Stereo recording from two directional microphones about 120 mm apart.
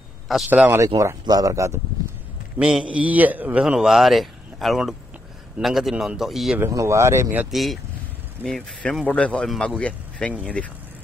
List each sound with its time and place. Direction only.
0.5 s a man's voice: 15° right (ahead or behind)
0.8 s speech: 30° right (ahead or behind)
2.6 s a man's voice: 10° right (ahead or behind)
6.7 s speech: 25° right (ahead or behind)
7.5 s a man's voice: centre (ahead or behind)